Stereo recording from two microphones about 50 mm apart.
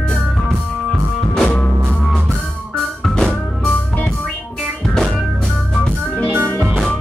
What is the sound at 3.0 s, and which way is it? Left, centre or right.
Music, centre.